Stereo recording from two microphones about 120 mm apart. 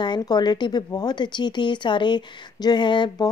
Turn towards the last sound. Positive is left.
turn(degrees=40)  # may be behind; listen again after turning